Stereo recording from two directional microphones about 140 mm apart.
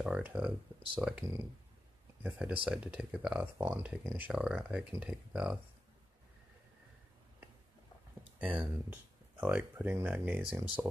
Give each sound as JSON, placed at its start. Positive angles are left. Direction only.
{"t": 0.0, "sound": "speech", "side_deg": -10}
{"t": 2.2, "sound": "speech", "side_deg": -10}
{"t": 3.5, "sound": "speech", "side_deg": -15}
{"t": 8.4, "sound": "speech", "side_deg": -10}